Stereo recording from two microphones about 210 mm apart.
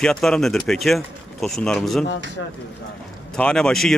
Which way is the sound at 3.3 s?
5° left (ahead or behind).